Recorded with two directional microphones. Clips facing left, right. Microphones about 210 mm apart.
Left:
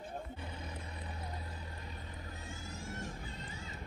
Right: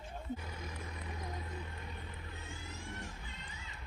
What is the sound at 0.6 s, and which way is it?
Vehicle, 35° left (ahead or behind).